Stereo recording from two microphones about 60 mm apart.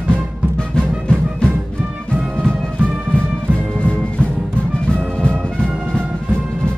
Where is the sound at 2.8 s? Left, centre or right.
Right.